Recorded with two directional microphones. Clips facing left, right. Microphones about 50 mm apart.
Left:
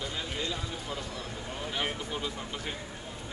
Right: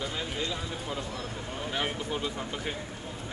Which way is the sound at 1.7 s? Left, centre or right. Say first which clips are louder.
Right 2 dB; centre.